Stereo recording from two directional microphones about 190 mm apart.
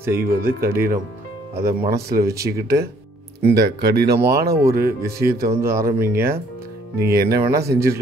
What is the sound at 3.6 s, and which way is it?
Speech, 60° right (ahead or behind).